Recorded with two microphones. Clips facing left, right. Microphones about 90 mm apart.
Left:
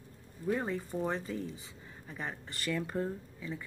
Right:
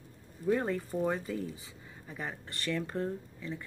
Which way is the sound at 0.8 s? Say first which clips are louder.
Right 2 dB; 5° right (ahead or behind).